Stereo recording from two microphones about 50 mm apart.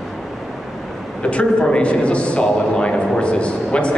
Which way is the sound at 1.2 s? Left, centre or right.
Centre.